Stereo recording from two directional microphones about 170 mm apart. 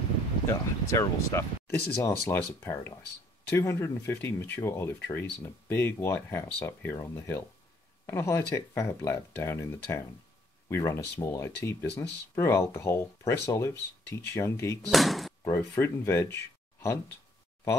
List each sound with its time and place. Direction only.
0.5 s speech: 15° left (ahead or behind)
14.9 s door: centre (ahead or behind)
15.4 s speech: 15° left (ahead or behind)